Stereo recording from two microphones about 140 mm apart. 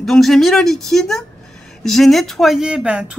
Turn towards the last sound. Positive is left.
turn(degrees=-5)  # may be behind; listen again after turning